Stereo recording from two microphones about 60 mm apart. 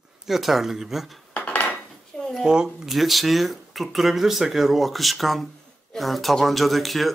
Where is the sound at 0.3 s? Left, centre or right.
Centre.